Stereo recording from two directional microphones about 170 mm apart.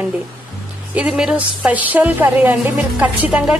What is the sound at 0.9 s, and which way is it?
A woman's voice, 5° right (ahead or behind).